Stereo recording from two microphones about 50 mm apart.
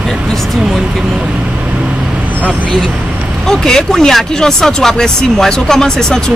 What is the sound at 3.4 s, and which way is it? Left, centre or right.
Speech, centre.